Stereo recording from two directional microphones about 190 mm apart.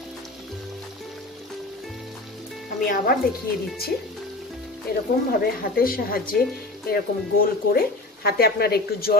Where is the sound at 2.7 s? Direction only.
45° left (ahead or behind).